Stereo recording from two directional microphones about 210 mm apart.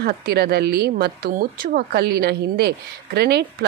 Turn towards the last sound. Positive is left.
turn(degrees=-50)  # may be behind; listen again after turning